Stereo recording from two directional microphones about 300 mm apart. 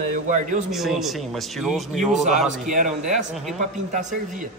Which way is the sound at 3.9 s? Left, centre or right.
Right.